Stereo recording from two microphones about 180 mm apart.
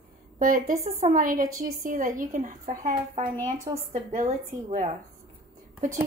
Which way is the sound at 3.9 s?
45° right (ahead or behind).